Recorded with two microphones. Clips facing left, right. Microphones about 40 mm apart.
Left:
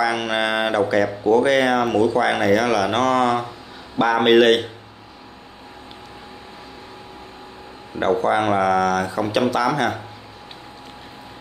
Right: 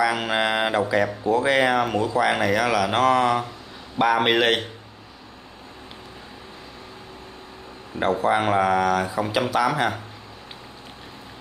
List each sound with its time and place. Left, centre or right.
0.0 s speech: centre
8.0 s speech: centre